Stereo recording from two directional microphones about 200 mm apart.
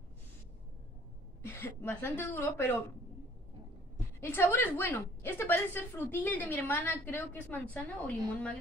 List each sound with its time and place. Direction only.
1.4 s a woman's voice: 10° left (ahead or behind)
4.2 s a woman's voice: 10° left (ahead or behind)